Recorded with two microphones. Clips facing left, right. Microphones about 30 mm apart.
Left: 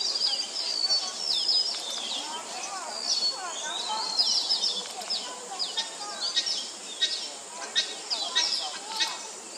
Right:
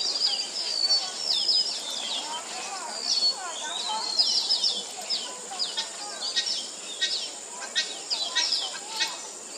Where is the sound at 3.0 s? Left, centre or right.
Centre.